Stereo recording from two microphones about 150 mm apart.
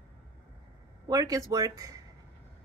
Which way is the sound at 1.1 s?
25° right (ahead or behind).